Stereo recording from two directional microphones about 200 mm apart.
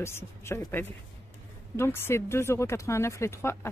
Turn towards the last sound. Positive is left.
turn(degrees=15)  # may be behind; listen again after turning